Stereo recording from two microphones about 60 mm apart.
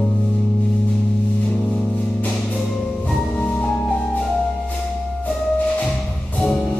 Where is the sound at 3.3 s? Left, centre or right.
Centre.